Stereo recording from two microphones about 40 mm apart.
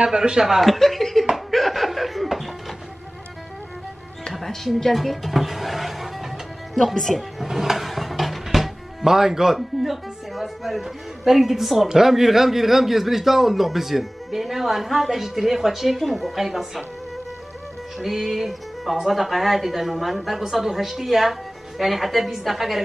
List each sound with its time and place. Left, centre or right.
0.0 s speech: centre
0.6 s a woman's voice: centre
1.3 s music: centre
4.3 s music: centre
4.7 s speech: centre
7.2 s music: centre
10.3 s speech: centre
17.9 s music: centre
19.0 s speech: centre